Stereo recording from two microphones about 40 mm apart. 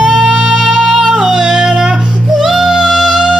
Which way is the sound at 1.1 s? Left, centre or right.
Centre.